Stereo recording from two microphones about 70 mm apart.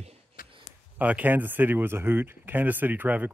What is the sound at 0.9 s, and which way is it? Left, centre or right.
Speech, right.